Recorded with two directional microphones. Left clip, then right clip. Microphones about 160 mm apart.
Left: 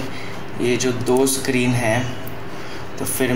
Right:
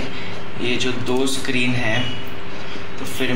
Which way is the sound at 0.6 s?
20° left (ahead or behind).